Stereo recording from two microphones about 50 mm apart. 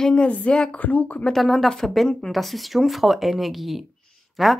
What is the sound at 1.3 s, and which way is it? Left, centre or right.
A woman's voice, centre.